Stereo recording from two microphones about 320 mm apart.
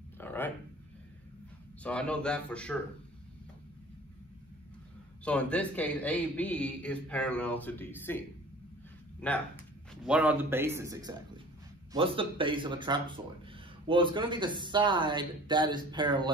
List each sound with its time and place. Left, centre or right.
0.2 s a sound: centre
1.8 s a man's voice: centre
5.2 s a man's voice: centre
9.2 s a man's voice: centre